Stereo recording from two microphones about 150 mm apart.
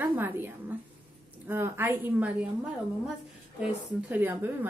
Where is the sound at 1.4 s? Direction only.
15° right (ahead or behind).